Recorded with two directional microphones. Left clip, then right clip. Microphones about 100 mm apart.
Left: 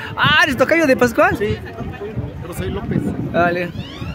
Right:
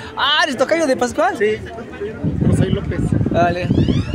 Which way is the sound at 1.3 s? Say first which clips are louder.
Right 4 dB; 40° left (ahead or behind).